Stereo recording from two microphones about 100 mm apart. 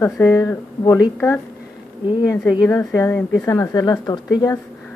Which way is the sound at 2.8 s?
30° left (ahead or behind).